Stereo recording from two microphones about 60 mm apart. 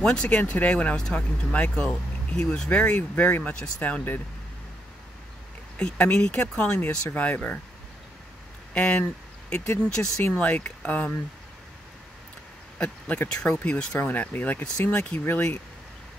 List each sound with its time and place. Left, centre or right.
0.0 s speech: centre
3.0 s speech: left
5.8 s speech: centre
8.7 s speech: centre
10.2 s speech: left
12.7 s speech: centre